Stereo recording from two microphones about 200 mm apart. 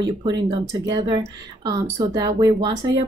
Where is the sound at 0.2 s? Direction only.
20° right (ahead or behind).